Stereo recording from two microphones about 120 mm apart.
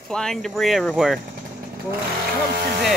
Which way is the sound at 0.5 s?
Centre (ahead or behind).